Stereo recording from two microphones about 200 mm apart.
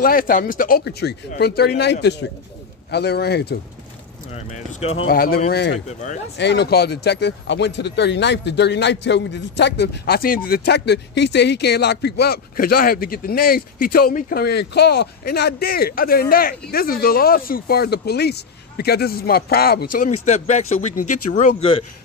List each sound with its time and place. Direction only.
0.0 s a man's voice: 45° left (ahead or behind)
4.3 s speech: 35° left (ahead or behind)
5.1 s speech: 45° left (ahead or behind)
5.5 s a man's voice: 60° left (ahead or behind)
20.2 s speech: 35° left (ahead or behind)